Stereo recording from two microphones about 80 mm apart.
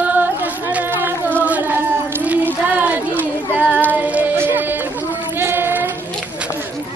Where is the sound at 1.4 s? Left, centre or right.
Right.